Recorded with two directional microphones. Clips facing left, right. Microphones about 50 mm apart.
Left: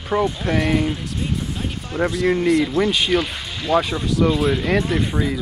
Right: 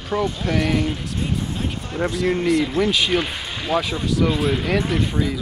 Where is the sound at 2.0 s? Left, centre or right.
Centre.